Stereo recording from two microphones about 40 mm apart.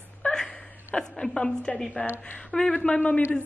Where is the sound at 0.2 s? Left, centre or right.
Centre.